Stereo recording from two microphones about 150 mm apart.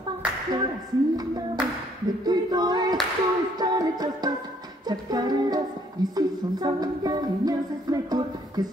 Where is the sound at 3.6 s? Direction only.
25° right (ahead or behind).